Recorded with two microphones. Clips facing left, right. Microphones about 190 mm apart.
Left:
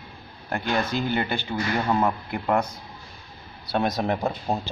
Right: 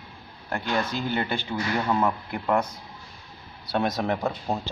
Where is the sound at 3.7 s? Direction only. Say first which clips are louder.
Left 1 dB; 15° left (ahead or behind).